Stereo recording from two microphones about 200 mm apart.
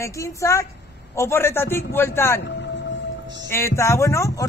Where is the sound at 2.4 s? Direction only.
60° left (ahead or behind).